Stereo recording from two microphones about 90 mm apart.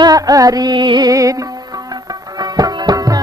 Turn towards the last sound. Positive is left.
turn(degrees=-45)  # may be behind; listen again after turning